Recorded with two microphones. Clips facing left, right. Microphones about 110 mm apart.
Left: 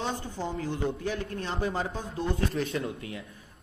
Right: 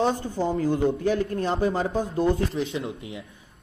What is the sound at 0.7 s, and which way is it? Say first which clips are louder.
Speech: right 8 dB; 40° right (ahead or behind).